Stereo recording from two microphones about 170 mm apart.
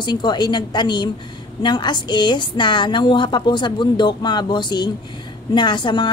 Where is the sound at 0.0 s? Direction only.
25° left (ahead or behind).